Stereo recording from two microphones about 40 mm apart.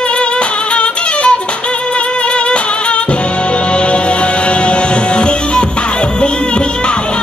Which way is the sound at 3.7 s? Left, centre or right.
Left.